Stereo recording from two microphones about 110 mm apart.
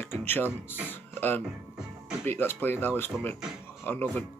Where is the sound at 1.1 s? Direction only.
20° left (ahead or behind).